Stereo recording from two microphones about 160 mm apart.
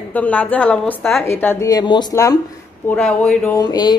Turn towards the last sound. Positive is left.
turn(degrees=25)  # may be behind; listen again after turning